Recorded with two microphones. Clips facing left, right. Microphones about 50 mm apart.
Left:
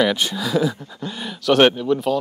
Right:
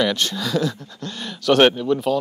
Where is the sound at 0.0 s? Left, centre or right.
Centre.